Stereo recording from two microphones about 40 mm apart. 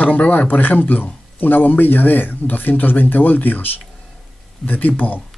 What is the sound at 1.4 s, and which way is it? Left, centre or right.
Speech, left.